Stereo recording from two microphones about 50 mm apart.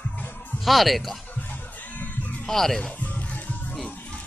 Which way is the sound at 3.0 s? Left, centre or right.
Left.